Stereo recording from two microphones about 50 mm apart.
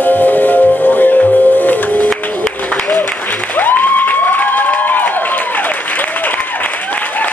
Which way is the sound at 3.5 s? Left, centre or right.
Left.